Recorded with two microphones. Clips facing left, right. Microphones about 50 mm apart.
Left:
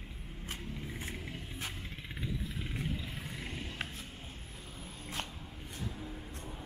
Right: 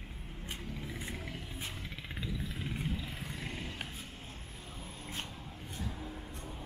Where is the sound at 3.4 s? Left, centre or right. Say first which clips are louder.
Right 2 dB; centre.